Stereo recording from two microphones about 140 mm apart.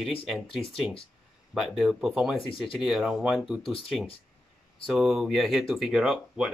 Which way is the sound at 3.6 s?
40° left (ahead or behind).